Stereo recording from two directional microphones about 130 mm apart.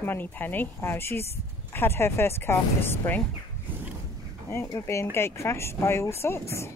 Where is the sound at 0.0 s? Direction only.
15° left (ahead or behind).